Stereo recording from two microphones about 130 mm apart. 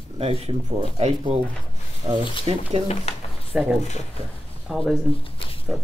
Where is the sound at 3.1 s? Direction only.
55° left (ahead or behind).